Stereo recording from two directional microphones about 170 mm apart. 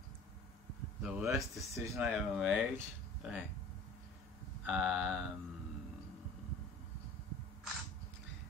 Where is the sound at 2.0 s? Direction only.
5° right (ahead or behind).